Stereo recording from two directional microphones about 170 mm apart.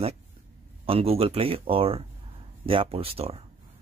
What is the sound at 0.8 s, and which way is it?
A man's voice, 35° right (ahead or behind).